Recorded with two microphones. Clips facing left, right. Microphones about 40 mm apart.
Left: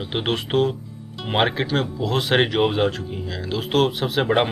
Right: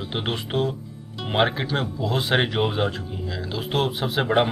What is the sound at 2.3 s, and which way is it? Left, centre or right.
Speech, centre.